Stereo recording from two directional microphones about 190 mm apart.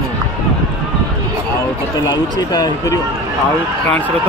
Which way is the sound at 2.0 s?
20° left (ahead or behind).